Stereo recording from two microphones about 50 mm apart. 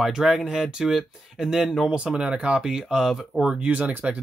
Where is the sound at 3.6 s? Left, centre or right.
Right.